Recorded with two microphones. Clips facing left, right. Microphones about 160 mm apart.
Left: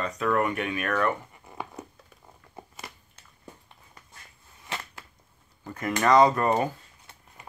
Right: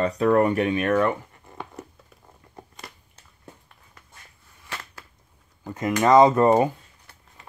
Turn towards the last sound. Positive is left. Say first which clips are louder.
# right 5 dB
turn(degrees=-25)  # may be behind; listen again after turning